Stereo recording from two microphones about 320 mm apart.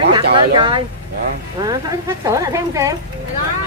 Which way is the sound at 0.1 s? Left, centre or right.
Centre.